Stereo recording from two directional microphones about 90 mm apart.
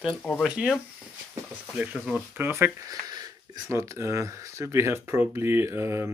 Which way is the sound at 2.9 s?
45° right (ahead or behind).